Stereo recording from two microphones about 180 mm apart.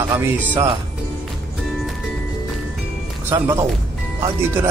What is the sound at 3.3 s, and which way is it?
Speech, 15° right (ahead or behind).